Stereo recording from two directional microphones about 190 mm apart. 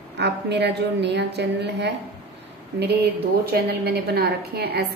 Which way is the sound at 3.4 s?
55° right (ahead or behind).